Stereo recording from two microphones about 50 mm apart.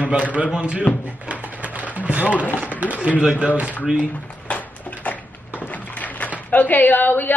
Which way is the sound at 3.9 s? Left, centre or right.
Left.